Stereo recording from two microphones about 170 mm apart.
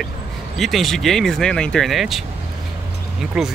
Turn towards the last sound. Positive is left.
turn(degrees=-5)  # may be behind; listen again after turning